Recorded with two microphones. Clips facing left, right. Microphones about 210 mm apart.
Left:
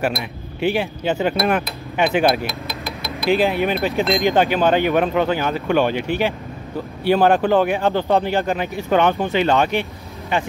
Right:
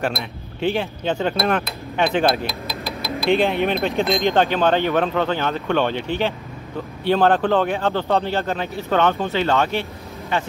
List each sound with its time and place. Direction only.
0.0 s speech: 10° left (ahead or behind)